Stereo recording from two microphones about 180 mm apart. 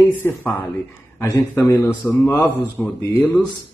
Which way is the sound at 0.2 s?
10° left (ahead or behind).